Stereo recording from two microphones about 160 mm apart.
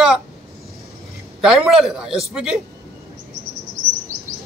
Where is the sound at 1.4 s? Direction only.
Centre (ahead or behind).